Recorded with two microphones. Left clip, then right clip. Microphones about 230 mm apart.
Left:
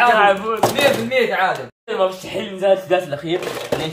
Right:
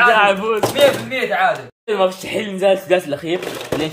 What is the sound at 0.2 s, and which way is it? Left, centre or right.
Speech, right.